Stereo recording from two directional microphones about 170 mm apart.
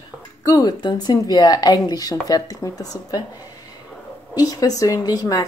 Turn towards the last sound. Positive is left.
turn(degrees=20)  # may be behind; listen again after turning